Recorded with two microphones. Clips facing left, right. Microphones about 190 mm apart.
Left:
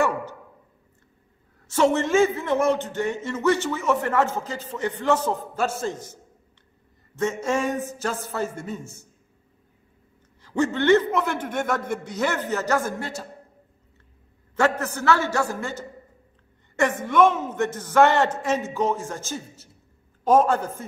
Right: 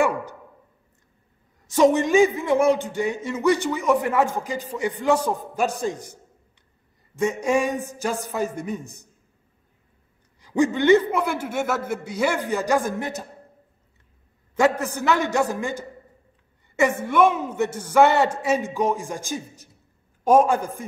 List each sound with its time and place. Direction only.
0.0 s a sound: 15° right (ahead or behind)
1.7 s a man's voice: 15° right (ahead or behind)
7.2 s a man's voice: 15° right (ahead or behind)
10.4 s a man's voice: 15° right (ahead or behind)
14.5 s a man's voice: 15° right (ahead or behind)